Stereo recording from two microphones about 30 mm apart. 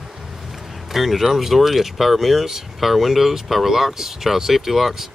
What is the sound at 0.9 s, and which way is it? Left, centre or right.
Speech, centre.